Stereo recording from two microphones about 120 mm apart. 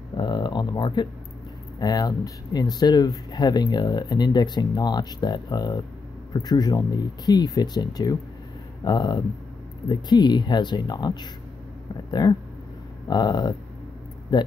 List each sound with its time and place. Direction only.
0.2 s speech: 40° left (ahead or behind)